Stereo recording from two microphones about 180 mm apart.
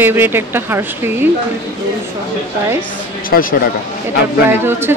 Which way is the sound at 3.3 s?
60° left (ahead or behind).